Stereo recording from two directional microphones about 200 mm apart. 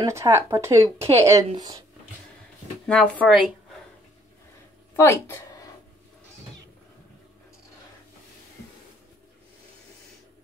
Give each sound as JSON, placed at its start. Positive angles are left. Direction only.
{"t": 0.0, "sound": "speech", "side_deg": -15}
{"t": 2.9, "sound": "speech", "side_deg": 5}
{"t": 4.9, "sound": "speech", "side_deg": 15}